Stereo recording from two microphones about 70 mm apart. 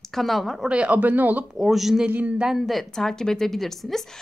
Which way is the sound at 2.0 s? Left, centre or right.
Right.